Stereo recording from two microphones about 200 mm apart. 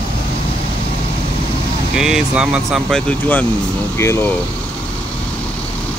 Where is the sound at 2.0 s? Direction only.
5° right (ahead or behind).